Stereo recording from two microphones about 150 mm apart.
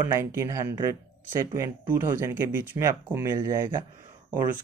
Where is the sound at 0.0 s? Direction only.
15° right (ahead or behind).